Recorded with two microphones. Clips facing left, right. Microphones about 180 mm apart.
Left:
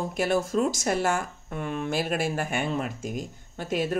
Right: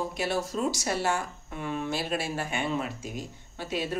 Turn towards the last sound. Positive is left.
turn(degrees=50)  # may be behind; listen again after turning